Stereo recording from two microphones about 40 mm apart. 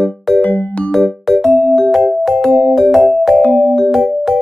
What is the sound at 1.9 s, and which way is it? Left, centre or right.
Music, centre.